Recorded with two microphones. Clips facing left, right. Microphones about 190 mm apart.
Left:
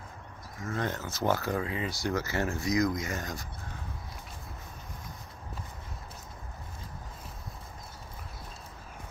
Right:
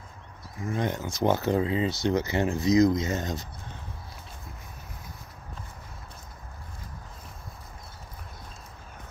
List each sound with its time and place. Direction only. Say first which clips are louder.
0.7 s speech: right 4 dB; 15° right (ahead or behind)